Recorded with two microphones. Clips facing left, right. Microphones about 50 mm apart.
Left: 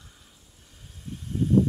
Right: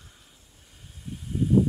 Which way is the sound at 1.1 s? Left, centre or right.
Centre.